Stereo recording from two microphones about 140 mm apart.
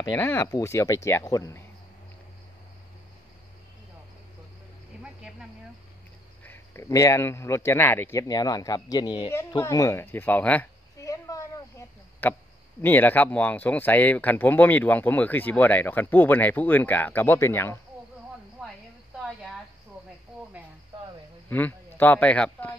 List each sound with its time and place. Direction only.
0.2 s a man's voice: 20° left (ahead or behind)
5.0 s a sound: 5° right (ahead or behind)
6.4 s a man's voice: 15° left (ahead or behind); by 9.3 s 35° left (ahead or behind)
9.5 s speech: 25° left (ahead or behind)
11.0 s a sound: 25° left (ahead or behind)
12.2 s speech: 15° left (ahead or behind)
21.5 s speech: 10° left (ahead or behind)